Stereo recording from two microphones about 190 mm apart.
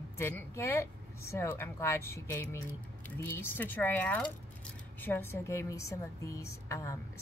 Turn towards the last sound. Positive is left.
turn(degrees=15)  # may be behind; listen again after turning